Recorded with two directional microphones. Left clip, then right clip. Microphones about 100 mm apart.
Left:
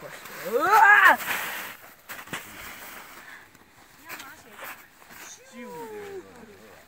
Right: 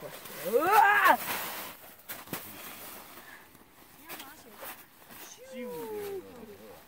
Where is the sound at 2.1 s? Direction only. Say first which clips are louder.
Left 5 dB; 5° left (ahead or behind).